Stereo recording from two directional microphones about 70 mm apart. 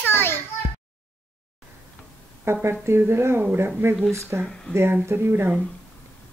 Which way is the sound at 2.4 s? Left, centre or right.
Right.